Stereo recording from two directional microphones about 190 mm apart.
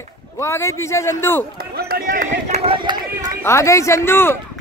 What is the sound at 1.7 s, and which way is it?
Run, 50° right (ahead or behind).